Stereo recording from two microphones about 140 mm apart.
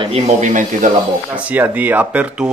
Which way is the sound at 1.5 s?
15° right (ahead or behind).